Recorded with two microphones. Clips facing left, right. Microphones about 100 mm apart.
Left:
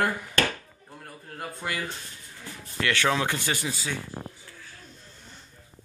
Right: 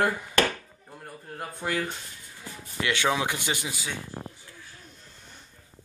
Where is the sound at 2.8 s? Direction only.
15° right (ahead or behind).